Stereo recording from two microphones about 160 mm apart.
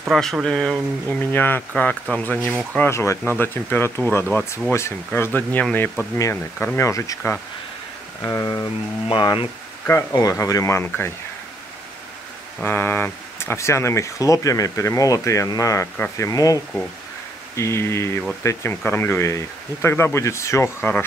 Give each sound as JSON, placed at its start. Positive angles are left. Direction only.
{"t": 0.1, "sound": "speech", "side_deg": 0}
{"t": 12.6, "sound": "speech", "side_deg": 15}
{"t": 17.6, "sound": "speech", "side_deg": 15}